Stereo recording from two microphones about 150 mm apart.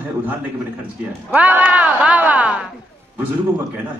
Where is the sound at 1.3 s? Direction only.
10° right (ahead or behind).